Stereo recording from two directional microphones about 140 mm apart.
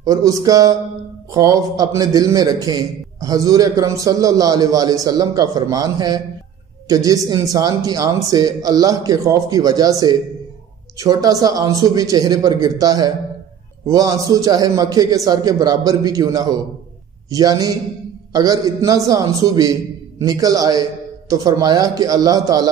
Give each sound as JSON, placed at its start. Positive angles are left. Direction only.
{"t": 0.0, "sound": "a man's voice", "side_deg": -25}